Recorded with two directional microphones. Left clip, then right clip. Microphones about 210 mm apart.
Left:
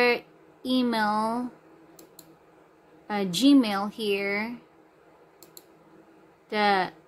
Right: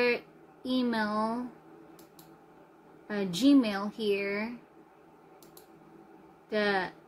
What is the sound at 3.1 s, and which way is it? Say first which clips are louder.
Speech: left 4 dB; 35° left (ahead or behind).